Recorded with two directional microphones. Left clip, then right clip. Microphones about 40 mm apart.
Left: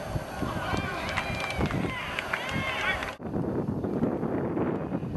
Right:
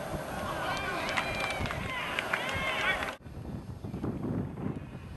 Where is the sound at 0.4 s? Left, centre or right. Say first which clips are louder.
Left 2 dB; left.